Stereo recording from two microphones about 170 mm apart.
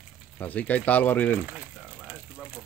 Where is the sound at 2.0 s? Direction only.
10° right (ahead or behind).